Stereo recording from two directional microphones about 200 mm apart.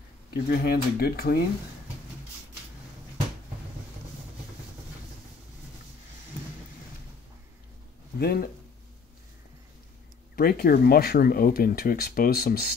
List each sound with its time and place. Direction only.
0.3 s speech: 50° left (ahead or behind)
8.2 s speech: 55° left (ahead or behind)
10.3 s speech: 50° left (ahead or behind)